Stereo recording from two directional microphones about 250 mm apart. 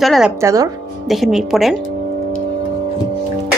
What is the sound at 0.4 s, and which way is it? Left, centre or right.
Speech, centre.